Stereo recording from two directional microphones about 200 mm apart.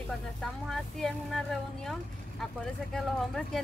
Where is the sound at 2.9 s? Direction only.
Centre (ahead or behind).